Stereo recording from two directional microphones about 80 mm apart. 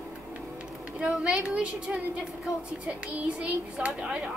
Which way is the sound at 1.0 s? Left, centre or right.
Centre.